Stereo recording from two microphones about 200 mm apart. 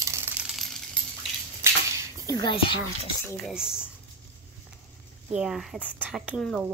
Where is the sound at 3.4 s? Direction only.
5° right (ahead or behind).